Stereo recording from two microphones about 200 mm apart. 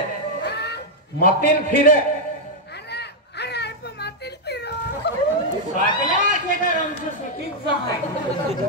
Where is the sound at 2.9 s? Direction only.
55° left (ahead or behind).